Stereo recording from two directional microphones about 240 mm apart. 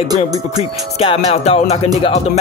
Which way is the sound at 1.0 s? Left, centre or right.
Left.